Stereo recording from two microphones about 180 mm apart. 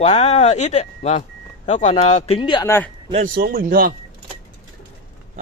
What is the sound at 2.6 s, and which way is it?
Speech, 15° left (ahead or behind).